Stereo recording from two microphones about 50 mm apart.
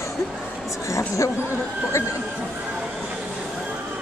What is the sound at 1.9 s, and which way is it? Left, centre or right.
Speech, left.